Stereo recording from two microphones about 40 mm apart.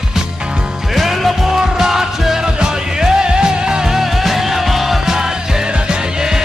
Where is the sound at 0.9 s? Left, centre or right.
Centre.